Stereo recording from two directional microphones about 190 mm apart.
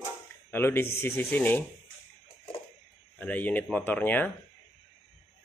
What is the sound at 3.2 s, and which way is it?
Speech, 10° left (ahead or behind).